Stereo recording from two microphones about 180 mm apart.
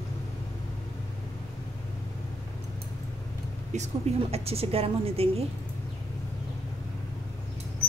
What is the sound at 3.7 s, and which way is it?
A woman's voice, 35° right (ahead or behind).